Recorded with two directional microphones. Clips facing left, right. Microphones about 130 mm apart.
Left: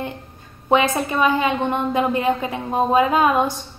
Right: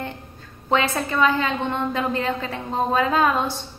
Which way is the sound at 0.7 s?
15° left (ahead or behind).